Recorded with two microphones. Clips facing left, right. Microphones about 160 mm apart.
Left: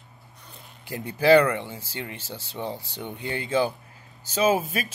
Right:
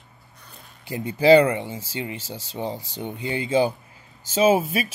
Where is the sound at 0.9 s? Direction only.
5° right (ahead or behind).